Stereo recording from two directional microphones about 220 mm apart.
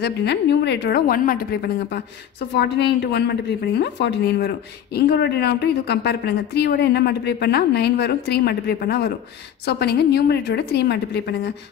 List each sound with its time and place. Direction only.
0.0 s a woman's voice: 50° left (ahead or behind)